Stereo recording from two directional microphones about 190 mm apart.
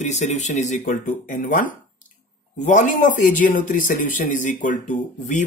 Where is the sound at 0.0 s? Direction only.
35° left (ahead or behind).